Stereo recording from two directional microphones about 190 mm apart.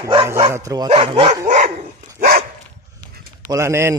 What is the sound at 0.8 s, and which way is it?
Speech, 30° right (ahead or behind).